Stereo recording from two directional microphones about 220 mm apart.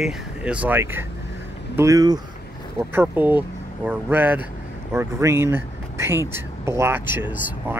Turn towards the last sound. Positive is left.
turn(degrees=-10)  # may be behind; listen again after turning